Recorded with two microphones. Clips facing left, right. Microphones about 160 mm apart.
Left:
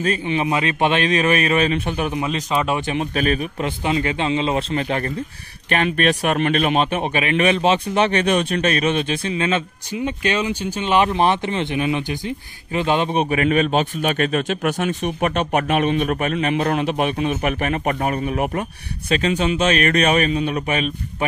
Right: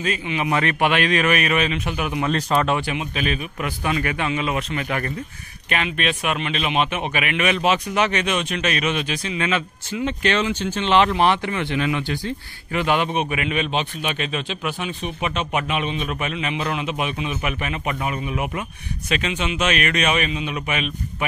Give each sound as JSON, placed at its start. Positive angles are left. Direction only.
{"t": 0.0, "sound": "a man's voice", "side_deg": 35}
{"t": 0.5, "sound": "a man's voice", "side_deg": 20}
{"t": 2.3, "sound": "speech", "side_deg": 5}
{"t": 2.9, "sound": "a man's voice", "side_deg": 40}
{"t": 3.6, "sound": "a man's voice", "side_deg": 25}
{"t": 5.7, "sound": "a man's voice", "side_deg": 45}
{"t": 10.0, "sound": "speech", "side_deg": 15}
{"t": 13.1, "sound": "speech", "side_deg": 35}